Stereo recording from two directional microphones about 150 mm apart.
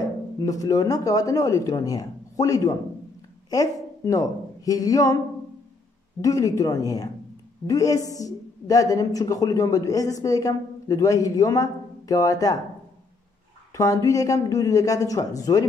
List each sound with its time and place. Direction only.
0.4 s a man's voice: 25° left (ahead or behind)
6.2 s a man's voice: 20° left (ahead or behind)
13.7 s a man's voice: 20° left (ahead or behind)